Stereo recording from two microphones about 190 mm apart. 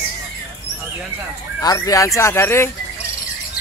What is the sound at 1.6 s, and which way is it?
Speech, 20° left (ahead or behind).